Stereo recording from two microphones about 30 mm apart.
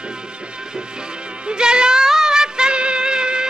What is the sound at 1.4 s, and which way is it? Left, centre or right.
Music, right.